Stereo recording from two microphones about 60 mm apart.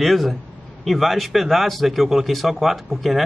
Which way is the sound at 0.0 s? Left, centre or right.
Centre.